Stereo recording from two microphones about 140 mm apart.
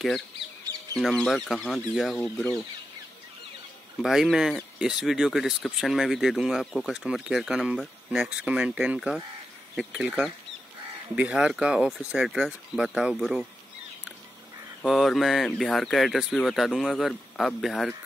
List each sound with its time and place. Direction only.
0.9 s speech: 5° left (ahead or behind)
4.0 s speech: centre (ahead or behind)
14.9 s speech: centre (ahead or behind)